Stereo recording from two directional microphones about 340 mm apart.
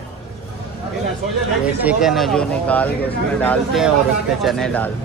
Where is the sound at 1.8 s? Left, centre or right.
Centre.